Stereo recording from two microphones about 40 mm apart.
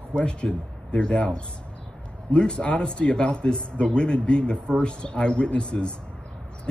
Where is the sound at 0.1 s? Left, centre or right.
Left.